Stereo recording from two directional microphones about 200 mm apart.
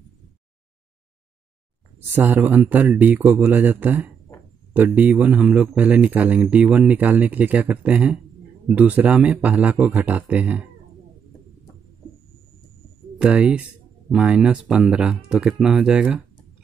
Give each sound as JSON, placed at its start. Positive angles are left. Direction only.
{"t": 2.0, "sound": "speech", "side_deg": -10}
{"t": 13.2, "sound": "speech", "side_deg": -5}